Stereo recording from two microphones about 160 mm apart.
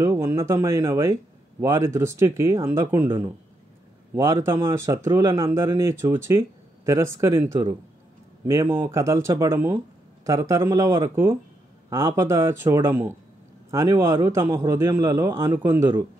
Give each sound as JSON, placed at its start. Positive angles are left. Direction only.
{"t": 0.0, "sound": "speech", "side_deg": -20}
{"t": 4.1, "sound": "speech", "side_deg": -15}